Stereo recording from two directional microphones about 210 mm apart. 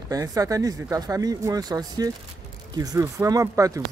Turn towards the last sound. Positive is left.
turn(degrees=-15)  # may be behind; listen again after turning